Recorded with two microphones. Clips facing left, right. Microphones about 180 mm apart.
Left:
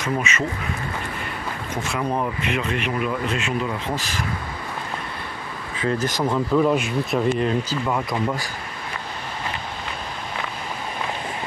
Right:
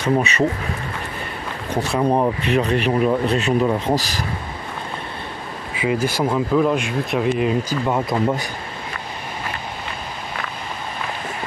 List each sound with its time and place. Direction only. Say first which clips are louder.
0.0 s speech: right 6 dB; 35° right (ahead or behind)
1.7 s speech: right 7 dB; 35° right (ahead or behind)
5.8 s speech: right 3 dB; 10° right (ahead or behind)
7.8 s speech: right 4 dB; 25° right (ahead or behind)